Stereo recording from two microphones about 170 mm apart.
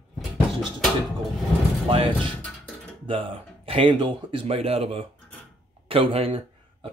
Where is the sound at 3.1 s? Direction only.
30° right (ahead or behind).